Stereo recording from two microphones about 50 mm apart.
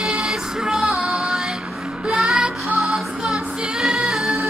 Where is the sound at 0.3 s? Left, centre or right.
Centre.